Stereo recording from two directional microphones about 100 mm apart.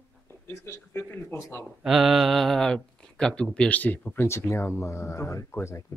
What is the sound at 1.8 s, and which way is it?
Speech, 5° right (ahead or behind).